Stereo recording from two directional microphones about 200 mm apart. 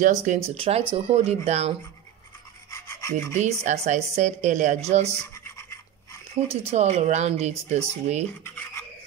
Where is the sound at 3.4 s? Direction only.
35° right (ahead or behind).